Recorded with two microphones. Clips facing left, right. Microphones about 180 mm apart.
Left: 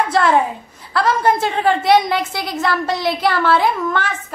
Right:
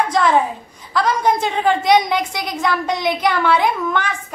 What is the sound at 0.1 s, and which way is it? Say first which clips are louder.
A woman's voice: left 1 dB; 5° left (ahead or behind).